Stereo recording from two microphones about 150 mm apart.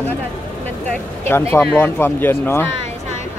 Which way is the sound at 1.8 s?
15° left (ahead or behind).